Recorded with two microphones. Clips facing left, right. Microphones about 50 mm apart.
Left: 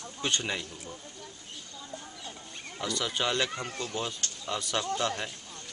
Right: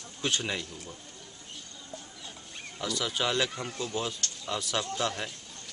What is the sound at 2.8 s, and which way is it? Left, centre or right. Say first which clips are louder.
Speech: even; centre.